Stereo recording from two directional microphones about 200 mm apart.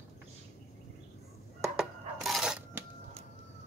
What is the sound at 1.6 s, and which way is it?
Cash register, centre (ahead or behind).